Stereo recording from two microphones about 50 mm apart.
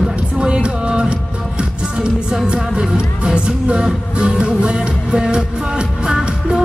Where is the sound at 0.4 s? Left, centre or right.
Centre.